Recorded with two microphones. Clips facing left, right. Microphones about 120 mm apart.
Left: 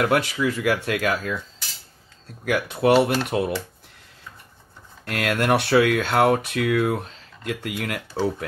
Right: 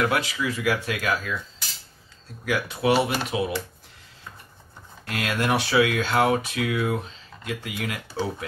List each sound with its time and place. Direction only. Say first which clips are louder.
0.0 s speech: left 3 dB; 55° left (ahead or behind)
2.4 s speech: left 3 dB; 50° left (ahead or behind)
5.0 s speech: left 3 dB; 60° left (ahead or behind)